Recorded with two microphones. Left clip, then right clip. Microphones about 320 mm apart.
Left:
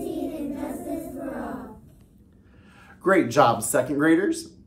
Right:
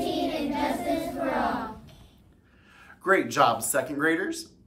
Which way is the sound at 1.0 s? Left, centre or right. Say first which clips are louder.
Right 6 dB; right.